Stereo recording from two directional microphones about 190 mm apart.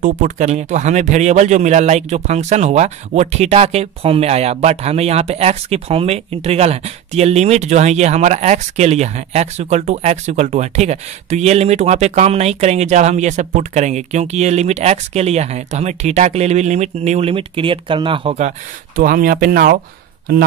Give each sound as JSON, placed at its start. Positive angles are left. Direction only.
{"t": 0.0, "sound": "speech", "side_deg": -45}
{"t": 18.9, "sound": "speech", "side_deg": -50}